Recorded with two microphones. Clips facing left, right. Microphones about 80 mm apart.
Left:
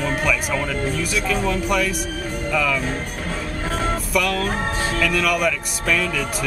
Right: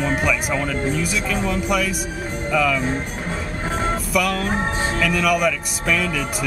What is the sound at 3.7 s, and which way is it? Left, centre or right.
Music, right.